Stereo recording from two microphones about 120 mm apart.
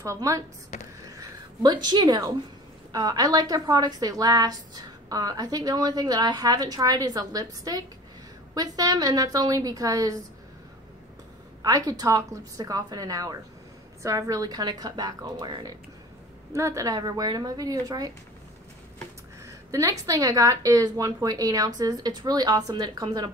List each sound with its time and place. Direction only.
0.0 s a woman's voice: 25° right (ahead or behind)
1.1 s a sound: 30° right (ahead or behind)
2.9 s a woman's voice: 30° right (ahead or behind)
11.6 s a woman's voice: 30° right (ahead or behind)
19.4 s a woman's voice: 25° right (ahead or behind)